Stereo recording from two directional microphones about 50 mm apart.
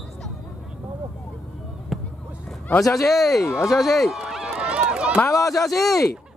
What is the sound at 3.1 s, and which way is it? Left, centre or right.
Speech, centre.